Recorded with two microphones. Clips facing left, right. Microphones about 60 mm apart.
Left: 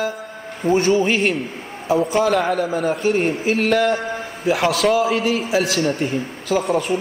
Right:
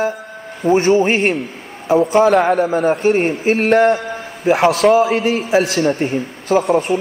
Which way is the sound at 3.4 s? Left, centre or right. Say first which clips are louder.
Right 6 dB; right.